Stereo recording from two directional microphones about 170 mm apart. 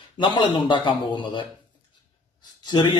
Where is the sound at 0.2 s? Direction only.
25° left (ahead or behind).